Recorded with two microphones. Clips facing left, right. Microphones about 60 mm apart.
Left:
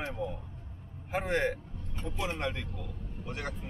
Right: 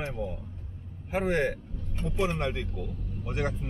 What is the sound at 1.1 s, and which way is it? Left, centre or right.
Speech, centre.